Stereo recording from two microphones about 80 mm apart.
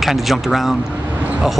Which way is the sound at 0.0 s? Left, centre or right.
Centre.